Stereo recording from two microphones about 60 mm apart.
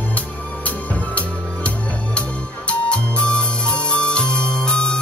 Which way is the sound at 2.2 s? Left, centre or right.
Centre.